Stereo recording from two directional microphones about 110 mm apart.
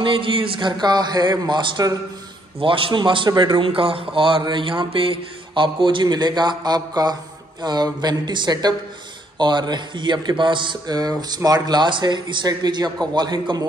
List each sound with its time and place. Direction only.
0.0 s speech: 50° right (ahead or behind)
2.6 s a man's voice: 50° right (ahead or behind)